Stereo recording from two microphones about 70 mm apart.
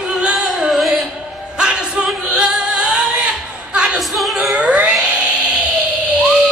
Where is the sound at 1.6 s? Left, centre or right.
Centre.